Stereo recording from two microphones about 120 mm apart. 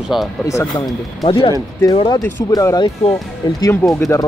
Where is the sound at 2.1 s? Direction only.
30° left (ahead or behind).